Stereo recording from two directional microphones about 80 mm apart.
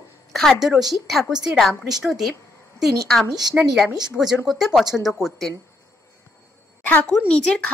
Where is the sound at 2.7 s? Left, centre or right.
Centre.